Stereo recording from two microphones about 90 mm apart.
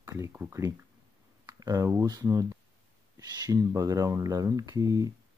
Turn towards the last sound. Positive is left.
turn(degrees=-40)  # may be behind; listen again after turning